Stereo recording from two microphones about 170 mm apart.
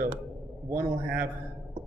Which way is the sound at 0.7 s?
10° right (ahead or behind).